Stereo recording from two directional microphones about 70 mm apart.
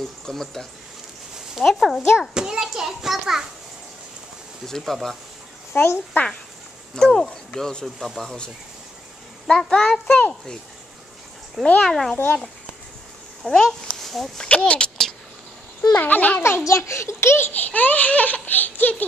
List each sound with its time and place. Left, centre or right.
0.3 s speech: centre
2.1 s a child's voice: centre
4.6 s speech: centre
5.7 s a child's voice: left
7.0 s speech: centre
9.5 s speech: centre
11.6 s speech: centre
13.4 s a child's voice: centre
14.5 s a sound: centre
16.0 s speech: left
16.3 s a child's voice: left
17.5 s speech: left